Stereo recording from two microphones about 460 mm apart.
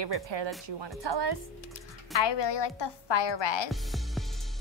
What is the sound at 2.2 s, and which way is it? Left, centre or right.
A woman's voice, left.